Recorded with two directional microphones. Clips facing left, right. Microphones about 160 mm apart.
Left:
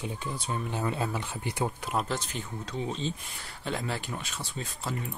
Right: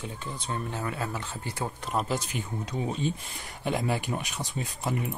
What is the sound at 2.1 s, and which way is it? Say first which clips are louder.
Speech: right 3 dB; 15° right (ahead or behind).